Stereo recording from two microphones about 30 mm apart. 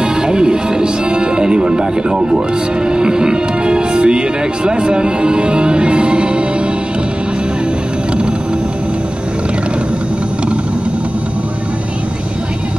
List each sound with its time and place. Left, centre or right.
0.0 s music: right
2.9 s speech: right